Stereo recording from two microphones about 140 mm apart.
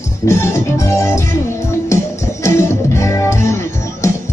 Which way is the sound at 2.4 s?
20° left (ahead or behind).